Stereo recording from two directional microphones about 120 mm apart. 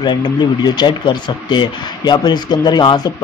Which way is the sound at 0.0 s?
40° left (ahead or behind).